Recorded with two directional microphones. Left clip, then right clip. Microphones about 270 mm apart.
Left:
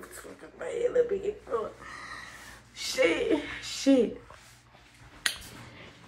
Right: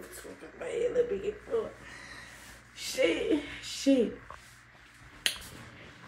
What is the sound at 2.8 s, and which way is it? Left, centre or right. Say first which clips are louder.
Speech: left 3 dB; centre.